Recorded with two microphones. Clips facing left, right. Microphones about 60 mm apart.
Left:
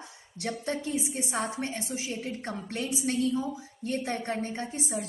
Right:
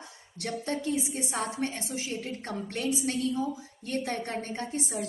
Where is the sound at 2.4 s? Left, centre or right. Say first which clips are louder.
Right 4 dB; left.